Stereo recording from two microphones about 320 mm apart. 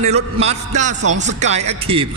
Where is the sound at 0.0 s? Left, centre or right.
Centre.